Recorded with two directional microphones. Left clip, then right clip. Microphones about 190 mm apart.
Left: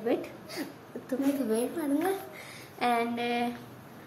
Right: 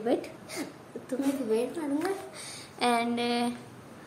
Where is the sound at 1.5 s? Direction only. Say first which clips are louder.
Right 1 dB; 25° left (ahead or behind).